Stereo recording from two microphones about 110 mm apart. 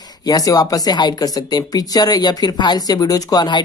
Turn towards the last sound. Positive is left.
turn(degrees=40)  # may be behind; listen again after turning